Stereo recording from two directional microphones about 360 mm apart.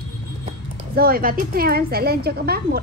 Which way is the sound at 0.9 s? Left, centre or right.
Right.